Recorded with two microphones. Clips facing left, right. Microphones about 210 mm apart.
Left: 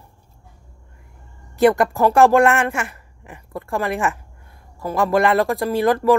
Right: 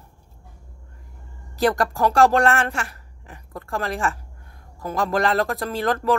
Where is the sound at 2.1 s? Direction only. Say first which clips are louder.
Left 4 dB; 15° left (ahead or behind).